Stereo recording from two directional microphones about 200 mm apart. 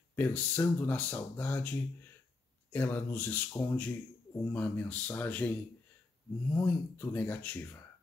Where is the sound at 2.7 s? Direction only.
10° left (ahead or behind).